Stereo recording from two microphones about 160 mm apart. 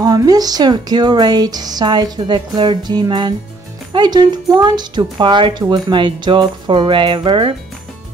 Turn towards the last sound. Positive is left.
turn(degrees=-30)  # may be behind; listen again after turning